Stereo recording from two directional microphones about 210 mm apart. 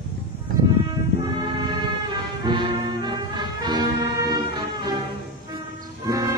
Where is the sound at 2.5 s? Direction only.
20° right (ahead or behind).